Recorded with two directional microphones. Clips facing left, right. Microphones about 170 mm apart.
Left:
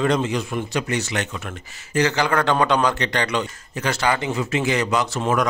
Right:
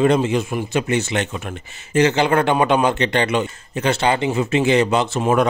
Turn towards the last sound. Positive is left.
turn(degrees=-25)  # may be behind; listen again after turning